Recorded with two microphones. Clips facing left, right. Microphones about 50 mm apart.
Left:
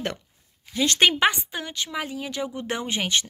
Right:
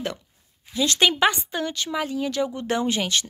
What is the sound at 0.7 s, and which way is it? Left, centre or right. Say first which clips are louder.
Speech: even; left.